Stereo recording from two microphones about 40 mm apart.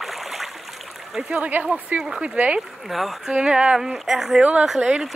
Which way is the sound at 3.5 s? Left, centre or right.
Right.